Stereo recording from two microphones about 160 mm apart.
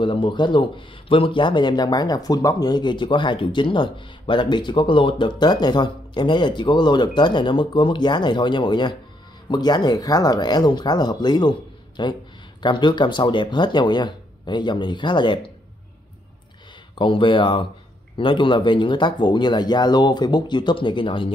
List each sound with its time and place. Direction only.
0.0 s speech: 30° left (ahead or behind)
17.0 s speech: 30° left (ahead or behind)